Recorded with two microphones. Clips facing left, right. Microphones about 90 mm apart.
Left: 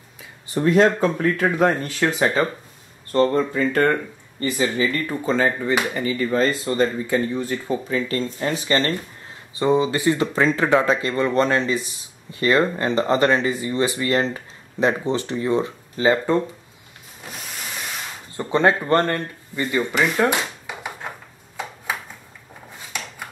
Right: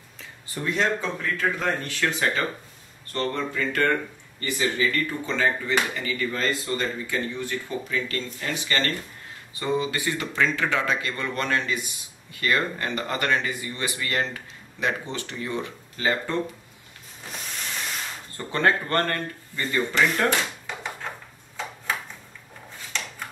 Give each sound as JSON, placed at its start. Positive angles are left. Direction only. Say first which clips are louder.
{"t": 0.7, "sound": "speech", "louder": "left 9 dB", "side_deg": 50}
{"t": 1.6, "sound": "speech", "louder": "left 7 dB", "side_deg": 35}
{"t": 5.2, "sound": "speech", "louder": "left 7 dB", "side_deg": 35}
{"t": 18.3, "sound": "speech", "louder": "left 5 dB", "side_deg": 20}
{"t": 21.9, "sound": "a sound", "louder": "right 1 dB", "side_deg": 10}